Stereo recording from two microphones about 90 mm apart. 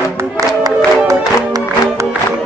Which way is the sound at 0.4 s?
40° right (ahead or behind).